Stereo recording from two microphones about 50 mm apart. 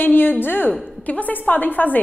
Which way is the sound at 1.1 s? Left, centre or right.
Left.